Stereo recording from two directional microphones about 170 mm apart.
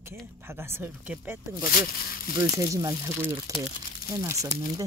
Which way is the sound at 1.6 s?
55° left (ahead or behind).